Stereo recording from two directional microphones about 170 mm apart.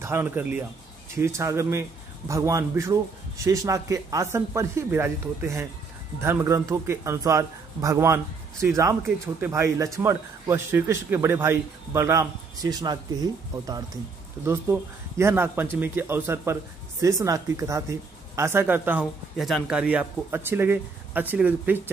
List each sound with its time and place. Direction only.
0.0 s speech: 15° right (ahead or behind)
14.4 s speech: 15° right (ahead or behind)